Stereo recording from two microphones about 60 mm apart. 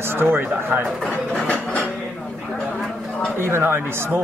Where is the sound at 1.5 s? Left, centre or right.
Centre.